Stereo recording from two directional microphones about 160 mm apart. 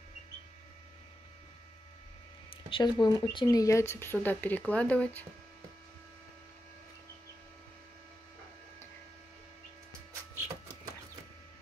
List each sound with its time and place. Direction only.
2.5 s speech: 30° left (ahead or behind); by 5.2 s 10° left (ahead or behind)